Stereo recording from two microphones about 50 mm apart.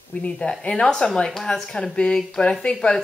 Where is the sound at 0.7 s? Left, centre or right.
Centre.